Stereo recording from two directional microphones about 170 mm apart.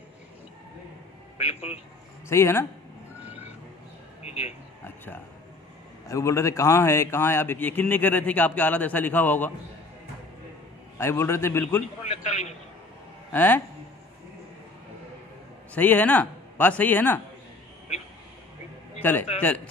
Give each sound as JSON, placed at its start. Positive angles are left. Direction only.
{"t": 1.4, "sound": "a man's voice", "side_deg": 40}
{"t": 2.2, "sound": "a man's voice", "side_deg": 15}
{"t": 3.2, "sound": "vehicle", "side_deg": -10}
{"t": 4.2, "sound": "a sound", "side_deg": 40}
{"t": 6.0, "sound": "a man's voice", "side_deg": 15}
{"t": 11.0, "sound": "a man's voice", "side_deg": 15}
{"t": 12.1, "sound": "a man's voice", "side_deg": 40}
{"t": 13.3, "sound": "a man's voice", "side_deg": 10}
{"t": 15.7, "sound": "speech", "side_deg": 10}
{"t": 18.9, "sound": "a man's voice", "side_deg": 10}